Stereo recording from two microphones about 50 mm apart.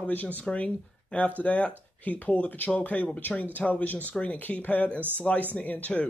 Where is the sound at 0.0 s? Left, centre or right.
Left.